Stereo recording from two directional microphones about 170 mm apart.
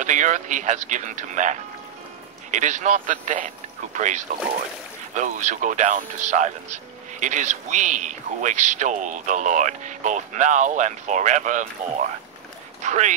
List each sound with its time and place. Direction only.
0.0 s a man's voice: 45° right (ahead or behind)
12.8 s a man's voice: 45° right (ahead or behind)